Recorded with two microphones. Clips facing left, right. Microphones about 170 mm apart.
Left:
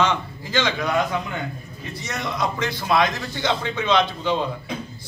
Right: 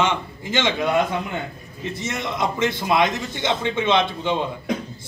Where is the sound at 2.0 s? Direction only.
20° right (ahead or behind).